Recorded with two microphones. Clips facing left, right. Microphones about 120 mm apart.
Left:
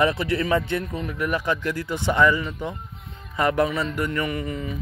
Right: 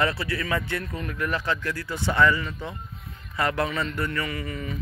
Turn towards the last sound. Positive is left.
turn(degrees=15)  # may be behind; listen again after turning